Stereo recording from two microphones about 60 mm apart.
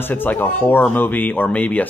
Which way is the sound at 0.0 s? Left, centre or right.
Left.